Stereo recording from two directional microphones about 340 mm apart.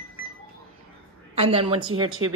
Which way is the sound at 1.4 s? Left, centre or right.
Centre.